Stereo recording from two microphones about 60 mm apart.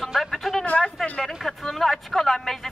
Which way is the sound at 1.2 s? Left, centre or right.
Centre.